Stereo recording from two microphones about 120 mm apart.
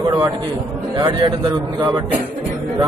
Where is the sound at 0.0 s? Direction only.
35° right (ahead or behind).